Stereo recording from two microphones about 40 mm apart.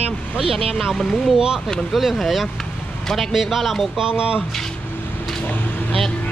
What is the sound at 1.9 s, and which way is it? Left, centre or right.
Speech, centre.